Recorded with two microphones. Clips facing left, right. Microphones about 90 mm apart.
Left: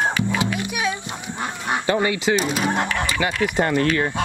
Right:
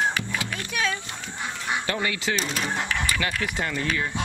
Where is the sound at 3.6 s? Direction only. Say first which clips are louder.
Left 10 dB; 60° left (ahead or behind).